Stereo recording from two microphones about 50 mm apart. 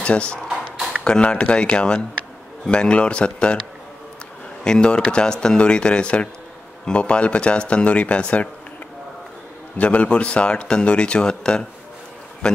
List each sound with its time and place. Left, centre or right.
0.0 s speech: left
4.6 s speech: centre
9.8 s speech: left